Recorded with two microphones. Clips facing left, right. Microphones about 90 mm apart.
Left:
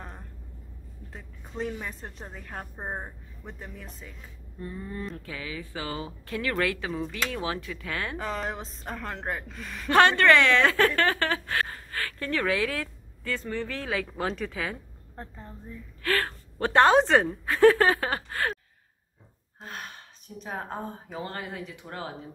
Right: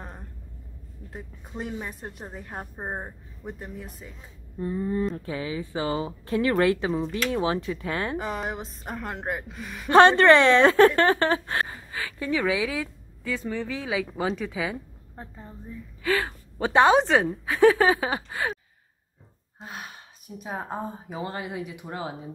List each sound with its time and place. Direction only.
1.1 s a woman's voice: 15° right (ahead or behind)
8.2 s a woman's voice: 10° right (ahead or behind)
9.8 s speech: 25° right (ahead or behind)
11.6 s a woman's voice: 10° right (ahead or behind)
19.6 s gasp: 10° right (ahead or behind)
20.3 s a woman's voice: 10° right (ahead or behind)